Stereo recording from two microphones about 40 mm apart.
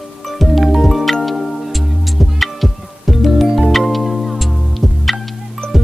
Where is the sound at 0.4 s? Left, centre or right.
Centre.